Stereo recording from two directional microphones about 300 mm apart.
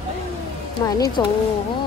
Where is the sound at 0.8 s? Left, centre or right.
Centre.